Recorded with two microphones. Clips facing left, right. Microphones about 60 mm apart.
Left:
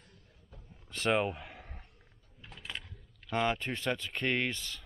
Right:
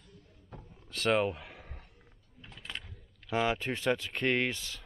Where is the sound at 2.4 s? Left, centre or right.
Centre.